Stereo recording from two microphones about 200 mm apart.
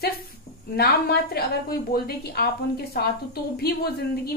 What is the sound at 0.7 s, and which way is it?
A woman's voice, 50° left (ahead or behind).